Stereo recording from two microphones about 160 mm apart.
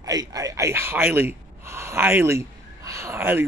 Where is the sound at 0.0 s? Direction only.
25° right (ahead or behind).